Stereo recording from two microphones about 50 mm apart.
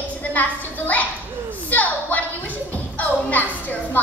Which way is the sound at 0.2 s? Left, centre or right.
Left.